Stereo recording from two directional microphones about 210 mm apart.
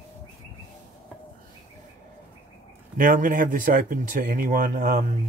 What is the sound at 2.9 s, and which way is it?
Speech, 40° right (ahead or behind).